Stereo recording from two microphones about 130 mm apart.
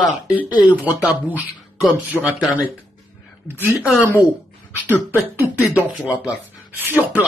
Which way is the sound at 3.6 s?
15° right (ahead or behind).